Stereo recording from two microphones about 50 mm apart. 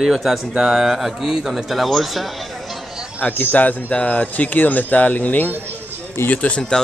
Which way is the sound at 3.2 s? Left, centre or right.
Left.